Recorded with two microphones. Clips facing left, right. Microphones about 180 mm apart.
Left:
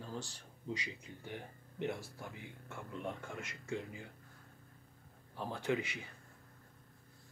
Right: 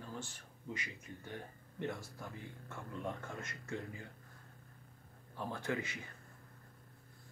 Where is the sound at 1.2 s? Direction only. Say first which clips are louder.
Left 2 dB; 20° left (ahead or behind).